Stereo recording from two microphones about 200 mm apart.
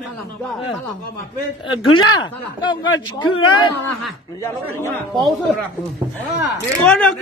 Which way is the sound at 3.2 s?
90° left.